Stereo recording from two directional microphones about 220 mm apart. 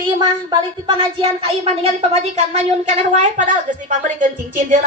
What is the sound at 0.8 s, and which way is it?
Speech, 20° right (ahead or behind).